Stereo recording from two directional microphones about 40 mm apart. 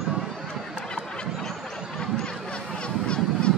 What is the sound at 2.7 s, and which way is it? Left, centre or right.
Honk, left.